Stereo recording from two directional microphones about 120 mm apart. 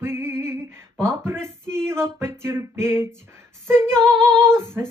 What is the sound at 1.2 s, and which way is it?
Speech, 20° right (ahead or behind).